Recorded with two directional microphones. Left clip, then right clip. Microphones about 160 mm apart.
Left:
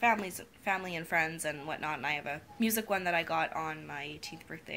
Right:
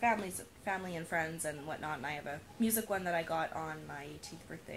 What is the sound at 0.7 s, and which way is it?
A woman's voice, 20° left (ahead or behind).